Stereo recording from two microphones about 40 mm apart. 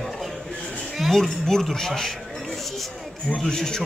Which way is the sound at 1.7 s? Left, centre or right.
Centre.